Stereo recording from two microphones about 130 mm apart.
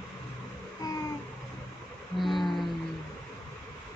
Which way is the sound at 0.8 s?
30° left (ahead or behind).